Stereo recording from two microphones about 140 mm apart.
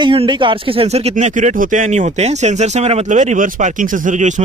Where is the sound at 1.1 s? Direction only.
65° right (ahead or behind).